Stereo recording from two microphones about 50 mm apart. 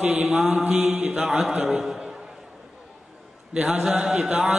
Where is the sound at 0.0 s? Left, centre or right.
Right.